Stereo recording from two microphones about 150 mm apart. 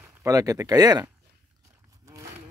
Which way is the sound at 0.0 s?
15° right (ahead or behind).